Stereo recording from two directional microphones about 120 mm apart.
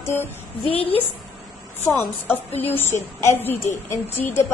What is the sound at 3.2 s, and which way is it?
A woman's voice, 20° left (ahead or behind).